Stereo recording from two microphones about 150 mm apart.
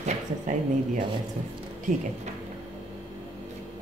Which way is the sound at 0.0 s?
55° right (ahead or behind).